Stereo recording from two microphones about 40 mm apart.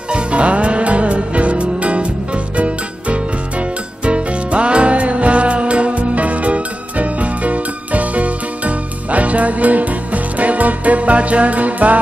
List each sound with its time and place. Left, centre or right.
0.1 s music: right